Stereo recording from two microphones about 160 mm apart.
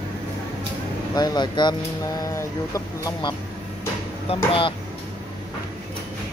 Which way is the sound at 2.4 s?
20° left (ahead or behind).